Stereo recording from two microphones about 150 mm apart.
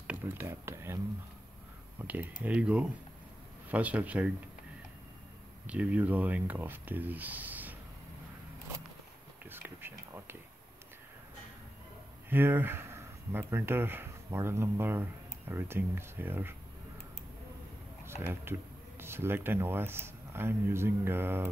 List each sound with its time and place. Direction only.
0.0 s speech: 10° right (ahead or behind)
2.0 s speech: 10° right (ahead or behind)
5.7 s speech: 10° right (ahead or behind)
9.4 s a sound: 15° right (ahead or behind)
12.3 s speech: 15° right (ahead or behind)
18.0 s speech: 15° right (ahead or behind)